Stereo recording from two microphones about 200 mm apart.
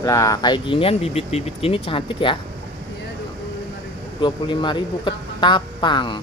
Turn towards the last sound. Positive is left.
turn(degrees=25)  # may be behind; listen again after turning